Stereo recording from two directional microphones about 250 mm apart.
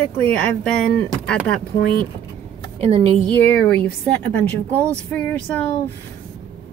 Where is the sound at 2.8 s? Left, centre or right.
Right.